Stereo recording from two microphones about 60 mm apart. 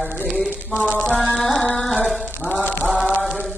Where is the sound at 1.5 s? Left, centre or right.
Centre.